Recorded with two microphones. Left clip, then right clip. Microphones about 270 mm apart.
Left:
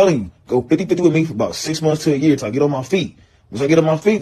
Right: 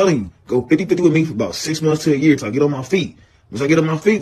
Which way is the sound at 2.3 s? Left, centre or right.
Centre.